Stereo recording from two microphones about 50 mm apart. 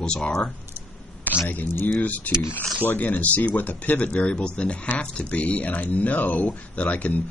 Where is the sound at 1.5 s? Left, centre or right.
Left.